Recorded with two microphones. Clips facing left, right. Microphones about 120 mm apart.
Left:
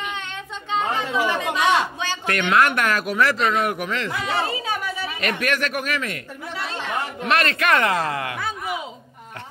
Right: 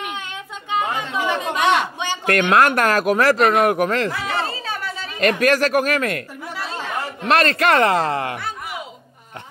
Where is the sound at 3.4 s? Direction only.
55° right (ahead or behind).